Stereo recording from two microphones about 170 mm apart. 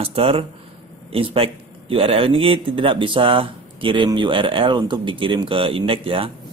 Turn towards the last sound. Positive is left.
turn(degrees=-30)  # may be behind; listen again after turning